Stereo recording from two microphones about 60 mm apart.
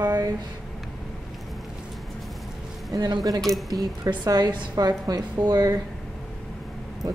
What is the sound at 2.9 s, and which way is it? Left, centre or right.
A woman's voice, right.